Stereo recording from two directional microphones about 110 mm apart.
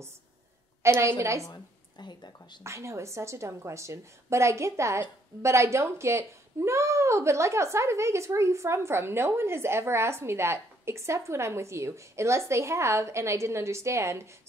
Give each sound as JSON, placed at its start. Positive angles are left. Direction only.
{"t": 0.8, "sound": "a woman's voice", "side_deg": -25}
{"t": 1.5, "sound": "speech", "side_deg": 40}
{"t": 2.6, "sound": "speech", "side_deg": -25}